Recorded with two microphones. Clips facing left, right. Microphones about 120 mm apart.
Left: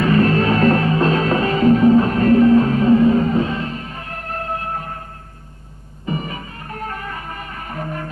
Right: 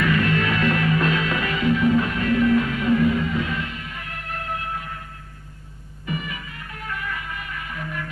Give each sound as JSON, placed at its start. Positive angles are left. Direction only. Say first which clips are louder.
{"t": 0.0, "sound": "music", "louder": "left 6 dB", "side_deg": 35}
{"t": 6.0, "sound": "music", "louder": "left 5 dB", "side_deg": 35}